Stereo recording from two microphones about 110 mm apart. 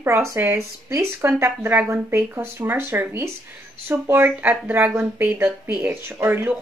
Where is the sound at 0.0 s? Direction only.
25° right (ahead or behind).